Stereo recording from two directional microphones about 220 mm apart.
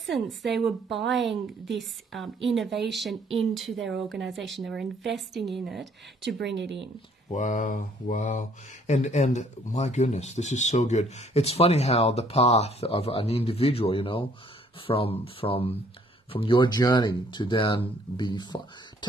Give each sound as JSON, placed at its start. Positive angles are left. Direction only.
{"t": 0.0, "sound": "a woman's voice", "side_deg": 0}
{"t": 6.2, "sound": "speech", "side_deg": -55}
{"t": 7.2, "sound": "speech", "side_deg": 35}